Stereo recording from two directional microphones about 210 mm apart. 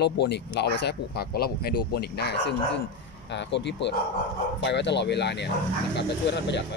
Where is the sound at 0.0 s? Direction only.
55° left (ahead or behind).